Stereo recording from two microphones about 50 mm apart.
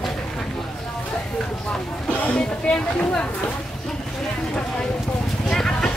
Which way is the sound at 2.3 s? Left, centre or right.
Left.